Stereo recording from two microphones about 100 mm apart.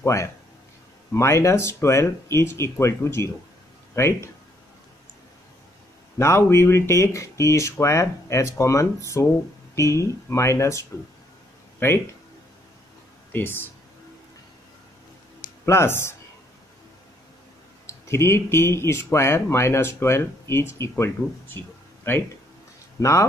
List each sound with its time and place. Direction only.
0.0 s speech: 30° left (ahead or behind)
6.1 s speech: 25° left (ahead or behind)
13.3 s speech: 20° left (ahead or behind)
15.6 s speech: 25° left (ahead or behind)
17.8 s speech: 25° left (ahead or behind)
21.2 s speech: 10° right (ahead or behind)
22.1 s speech: 20° left (ahead or behind)